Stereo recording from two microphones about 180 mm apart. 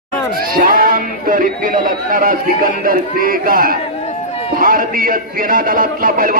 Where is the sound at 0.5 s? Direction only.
50° right (ahead or behind).